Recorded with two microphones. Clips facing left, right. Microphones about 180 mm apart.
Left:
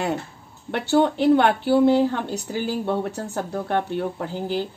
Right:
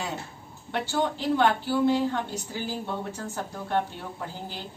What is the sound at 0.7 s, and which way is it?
Speech, 65° left (ahead or behind).